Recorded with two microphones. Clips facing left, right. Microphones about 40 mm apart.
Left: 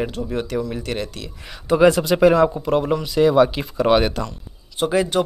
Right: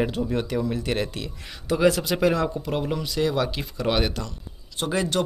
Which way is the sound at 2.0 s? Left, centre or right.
Left.